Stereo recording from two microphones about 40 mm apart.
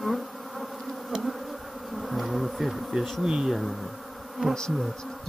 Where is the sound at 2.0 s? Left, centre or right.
Centre.